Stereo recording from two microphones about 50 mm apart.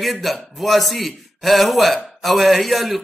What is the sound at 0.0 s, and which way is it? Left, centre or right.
A man's voice, centre.